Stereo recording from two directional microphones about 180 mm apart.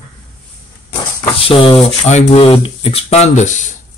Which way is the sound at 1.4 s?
30° left (ahead or behind).